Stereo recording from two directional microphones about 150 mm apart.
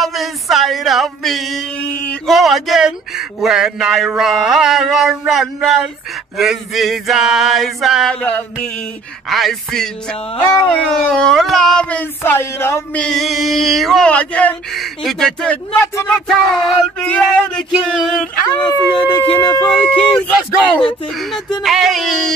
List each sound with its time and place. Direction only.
0.0 s a sound: centre (ahead or behind)
3.3 s speech: 5° right (ahead or behind)
18.7 s speech: 35° left (ahead or behind)
19.7 s speech: 10° left (ahead or behind)